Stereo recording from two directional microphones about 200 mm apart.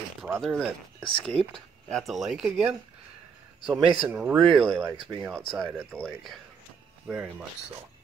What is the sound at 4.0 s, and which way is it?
Speech, 10° right (ahead or behind).